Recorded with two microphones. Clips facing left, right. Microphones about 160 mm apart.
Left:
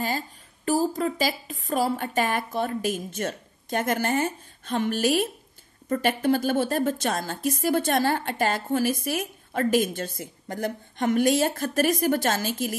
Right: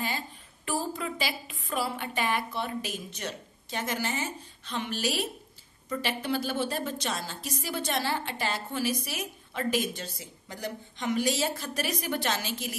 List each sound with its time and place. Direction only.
0.7 s a woman's voice: 40° left (ahead or behind)